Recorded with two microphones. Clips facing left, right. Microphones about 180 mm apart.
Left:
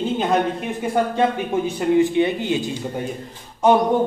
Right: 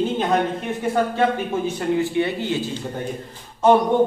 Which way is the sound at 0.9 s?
15° left (ahead or behind).